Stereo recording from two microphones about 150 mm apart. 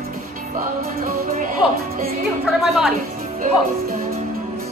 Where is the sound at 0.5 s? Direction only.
60° right (ahead or behind).